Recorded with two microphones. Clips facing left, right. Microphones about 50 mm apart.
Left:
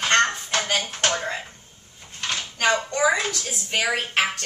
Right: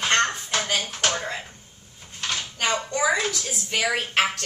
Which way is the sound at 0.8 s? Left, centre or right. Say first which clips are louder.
Left 1 dB; centre.